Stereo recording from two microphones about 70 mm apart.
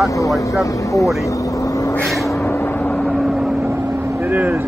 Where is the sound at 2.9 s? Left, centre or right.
Centre.